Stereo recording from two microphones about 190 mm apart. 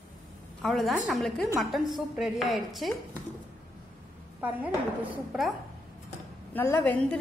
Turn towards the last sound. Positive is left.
turn(degrees=10)  # may be behind; listen again after turning